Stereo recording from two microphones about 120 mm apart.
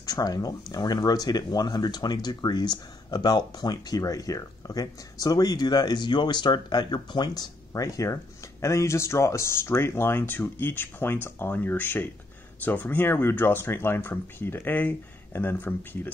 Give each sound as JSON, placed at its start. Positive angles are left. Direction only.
{"t": 0.0, "sound": "speech", "side_deg": 30}